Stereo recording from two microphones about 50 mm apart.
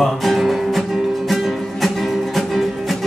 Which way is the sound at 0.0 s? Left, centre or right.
Centre.